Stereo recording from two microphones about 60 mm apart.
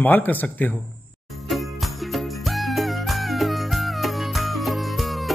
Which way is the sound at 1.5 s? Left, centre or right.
Centre.